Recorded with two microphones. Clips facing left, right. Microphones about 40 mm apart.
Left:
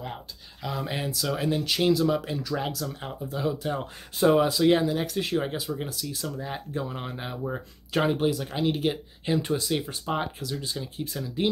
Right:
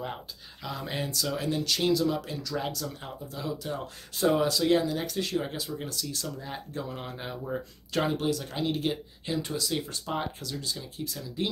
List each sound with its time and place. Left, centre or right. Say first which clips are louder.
0.7 s speech: left 3 dB; centre
2.7 s speech: left 3 dB; centre
3.0 s speech: left 6 dB; left
4.2 s speech: left 4 dB; centre
9.2 s speech: left 6 dB; left
10.5 s speech: left 3 dB; left